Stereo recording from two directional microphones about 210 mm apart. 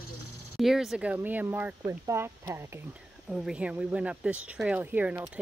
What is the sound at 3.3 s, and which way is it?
Speech, centre (ahead or behind).